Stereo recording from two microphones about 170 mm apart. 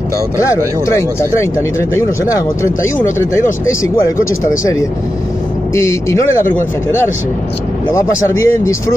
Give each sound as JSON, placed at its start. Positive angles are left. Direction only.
{"t": 0.4, "sound": "speech", "side_deg": 15}
{"t": 5.8, "sound": "speech", "side_deg": 15}